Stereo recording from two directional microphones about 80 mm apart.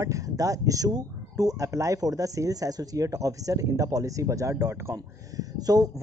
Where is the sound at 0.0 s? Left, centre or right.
Right.